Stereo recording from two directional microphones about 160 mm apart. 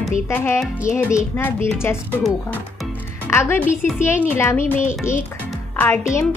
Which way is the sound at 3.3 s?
15° left (ahead or behind).